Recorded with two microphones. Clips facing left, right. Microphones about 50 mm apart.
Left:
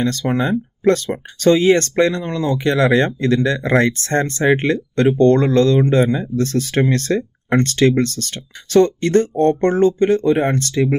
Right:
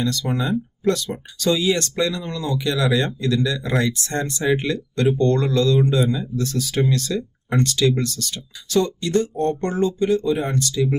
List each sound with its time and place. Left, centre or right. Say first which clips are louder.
0.0 s speech: left 5 dB; left